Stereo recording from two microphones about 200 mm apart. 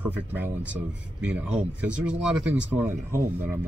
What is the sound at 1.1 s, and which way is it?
Speech, 5° right (ahead or behind).